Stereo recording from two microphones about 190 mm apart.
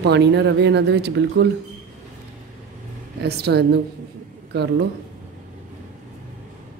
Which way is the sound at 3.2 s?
60° right (ahead or behind).